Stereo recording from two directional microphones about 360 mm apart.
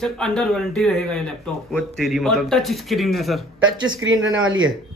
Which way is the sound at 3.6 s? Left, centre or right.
Right.